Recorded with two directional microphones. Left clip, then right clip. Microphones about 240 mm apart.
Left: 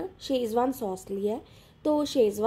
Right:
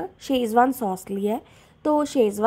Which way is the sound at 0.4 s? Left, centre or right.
Right.